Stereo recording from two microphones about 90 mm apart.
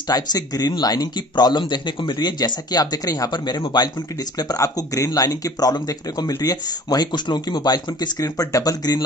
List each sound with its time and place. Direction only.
0.1 s speech: 45° left (ahead or behind)